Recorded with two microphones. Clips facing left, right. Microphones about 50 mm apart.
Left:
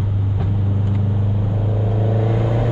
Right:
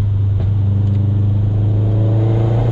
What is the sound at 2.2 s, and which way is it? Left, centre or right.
Vehicle, centre.